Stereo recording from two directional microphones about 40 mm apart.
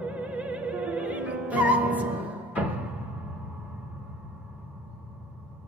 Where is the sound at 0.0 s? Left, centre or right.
Right.